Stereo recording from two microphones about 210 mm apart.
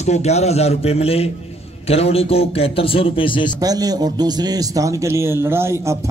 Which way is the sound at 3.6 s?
15° right (ahead or behind).